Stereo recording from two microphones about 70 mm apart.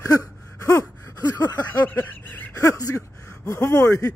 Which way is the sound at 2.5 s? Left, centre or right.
Left.